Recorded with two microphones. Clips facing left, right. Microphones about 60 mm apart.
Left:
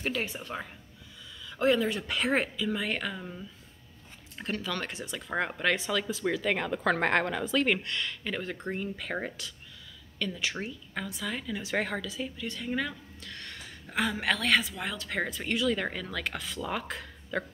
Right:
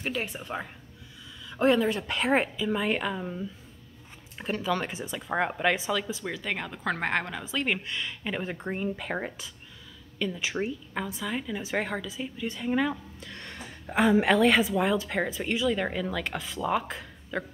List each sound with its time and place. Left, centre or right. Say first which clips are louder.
0.0 s a woman's voice: even; centre